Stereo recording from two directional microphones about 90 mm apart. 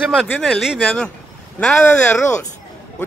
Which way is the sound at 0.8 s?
5° left (ahead or behind).